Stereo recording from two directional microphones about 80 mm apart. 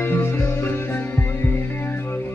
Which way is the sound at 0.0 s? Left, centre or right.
Left.